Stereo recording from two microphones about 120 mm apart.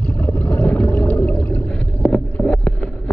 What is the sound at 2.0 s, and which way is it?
Boat, 5° left (ahead or behind).